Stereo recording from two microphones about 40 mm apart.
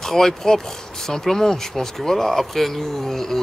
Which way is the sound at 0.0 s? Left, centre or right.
Centre.